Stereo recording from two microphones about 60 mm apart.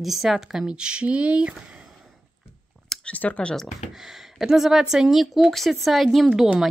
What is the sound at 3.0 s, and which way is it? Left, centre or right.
Speech, left.